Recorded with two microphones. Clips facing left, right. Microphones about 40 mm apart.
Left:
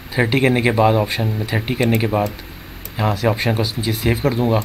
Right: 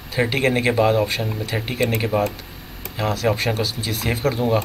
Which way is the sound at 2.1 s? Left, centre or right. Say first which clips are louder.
Left 1 dB; left.